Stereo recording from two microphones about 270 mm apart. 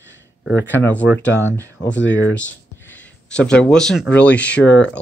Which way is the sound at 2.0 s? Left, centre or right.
Left.